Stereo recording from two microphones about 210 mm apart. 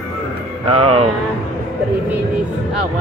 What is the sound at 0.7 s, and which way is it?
Speech, 25° right (ahead or behind).